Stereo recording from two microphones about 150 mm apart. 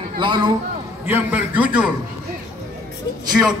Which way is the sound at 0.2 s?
30° right (ahead or behind).